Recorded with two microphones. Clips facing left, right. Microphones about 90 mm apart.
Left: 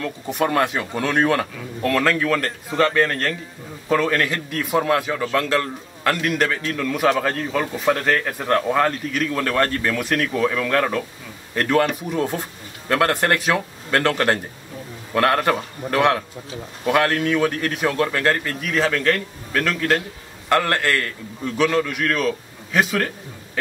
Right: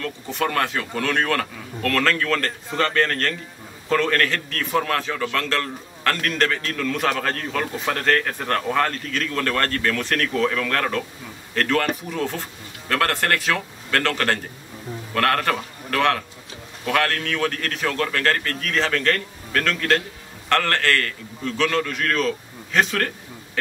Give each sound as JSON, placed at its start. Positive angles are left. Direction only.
{"t": 0.0, "sound": "a man's voice", "side_deg": 15}